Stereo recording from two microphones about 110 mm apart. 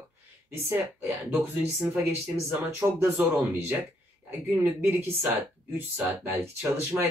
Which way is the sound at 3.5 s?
20° right (ahead or behind).